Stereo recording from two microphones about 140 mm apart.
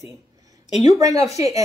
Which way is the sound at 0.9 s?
25° right (ahead or behind).